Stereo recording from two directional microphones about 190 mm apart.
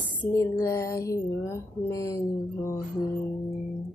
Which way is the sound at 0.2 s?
15° left (ahead or behind).